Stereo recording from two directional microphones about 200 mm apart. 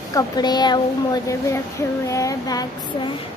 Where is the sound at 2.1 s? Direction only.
15° left (ahead or behind).